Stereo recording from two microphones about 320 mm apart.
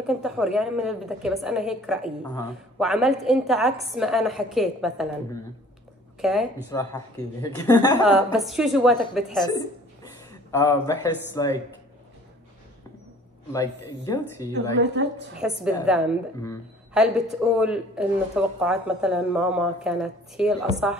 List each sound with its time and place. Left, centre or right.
0.0 s a woman's voice: centre
6.2 s a woman's voice: centre
10.5 s speech: centre
13.5 s speech: centre
14.5 s a woman's voice: right
15.3 s a woman's voice: centre